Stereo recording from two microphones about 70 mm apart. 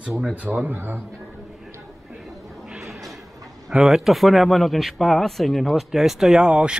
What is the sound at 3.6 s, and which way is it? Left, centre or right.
A man's voice, centre.